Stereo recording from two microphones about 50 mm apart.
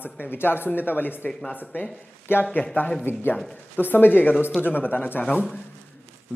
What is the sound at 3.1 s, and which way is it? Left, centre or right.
Speech, left.